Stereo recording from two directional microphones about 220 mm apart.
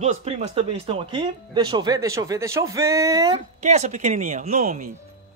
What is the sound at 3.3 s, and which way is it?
Speech, 30° right (ahead or behind).